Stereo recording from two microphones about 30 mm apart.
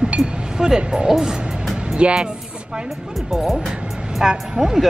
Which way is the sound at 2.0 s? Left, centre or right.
Right.